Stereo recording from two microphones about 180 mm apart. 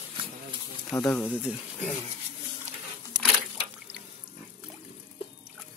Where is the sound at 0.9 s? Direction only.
10° left (ahead or behind).